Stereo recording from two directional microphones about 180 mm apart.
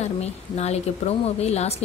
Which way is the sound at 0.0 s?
35° left (ahead or behind).